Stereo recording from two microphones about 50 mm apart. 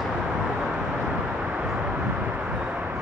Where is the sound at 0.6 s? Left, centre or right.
Centre.